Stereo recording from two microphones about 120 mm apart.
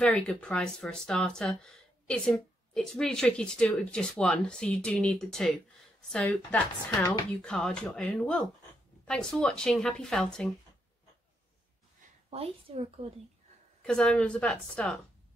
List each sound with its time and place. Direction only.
0.0 s speech: 5° left (ahead or behind)
12.3 s a woman's voice: 55° right (ahead or behind)
13.8 s speech: 5° left (ahead or behind)